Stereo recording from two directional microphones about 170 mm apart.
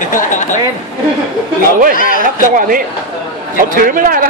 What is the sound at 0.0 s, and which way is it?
Speech, 50° left (ahead or behind).